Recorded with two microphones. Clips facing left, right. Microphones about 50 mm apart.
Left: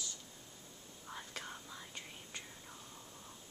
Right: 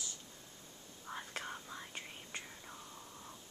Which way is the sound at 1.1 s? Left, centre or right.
Right.